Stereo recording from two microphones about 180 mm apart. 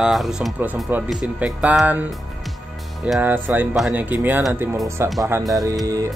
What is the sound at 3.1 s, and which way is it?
Speech, 10° right (ahead or behind).